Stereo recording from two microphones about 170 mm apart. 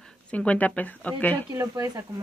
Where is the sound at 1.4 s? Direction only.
20° right (ahead or behind).